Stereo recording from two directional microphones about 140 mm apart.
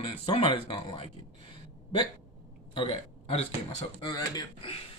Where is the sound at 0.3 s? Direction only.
35° left (ahead or behind).